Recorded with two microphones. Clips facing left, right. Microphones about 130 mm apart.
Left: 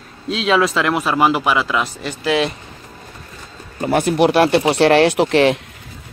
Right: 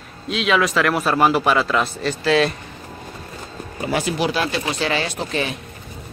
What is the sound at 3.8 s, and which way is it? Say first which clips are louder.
Speech: left 7 dB; 50° left (ahead or behind).